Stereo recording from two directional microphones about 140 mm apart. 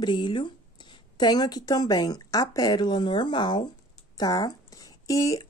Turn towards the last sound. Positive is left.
turn(degrees=25)  # may be behind; listen again after turning